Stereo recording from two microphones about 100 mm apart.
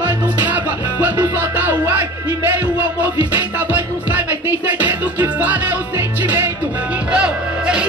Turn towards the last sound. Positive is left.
turn(degrees=-10)  # may be behind; listen again after turning